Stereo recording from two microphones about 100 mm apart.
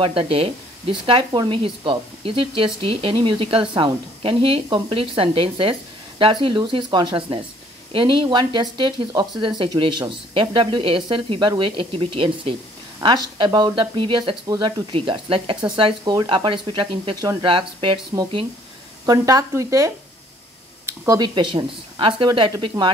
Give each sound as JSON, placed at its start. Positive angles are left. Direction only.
{"t": 0.0, "sound": "speech", "side_deg": -70}
{"t": 1.6, "sound": "speech", "side_deg": -65}
{"t": 11.9, "sound": "speech", "side_deg": -65}
{"t": 13.0, "sound": "speech", "side_deg": -45}
{"t": 15.7, "sound": "speech", "side_deg": -50}
{"t": 19.0, "sound": "speech", "side_deg": -35}
{"t": 20.8, "sound": "a sound", "side_deg": -25}
{"t": 21.2, "sound": "speech", "side_deg": -55}
{"t": 22.8, "sound": "speech", "side_deg": -40}